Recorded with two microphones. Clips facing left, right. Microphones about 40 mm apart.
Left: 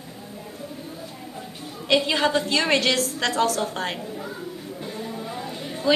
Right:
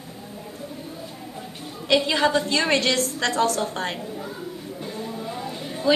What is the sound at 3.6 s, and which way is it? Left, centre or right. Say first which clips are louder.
A woman's voice: even; centre.